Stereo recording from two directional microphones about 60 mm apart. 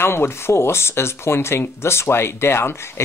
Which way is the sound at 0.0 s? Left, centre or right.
Left.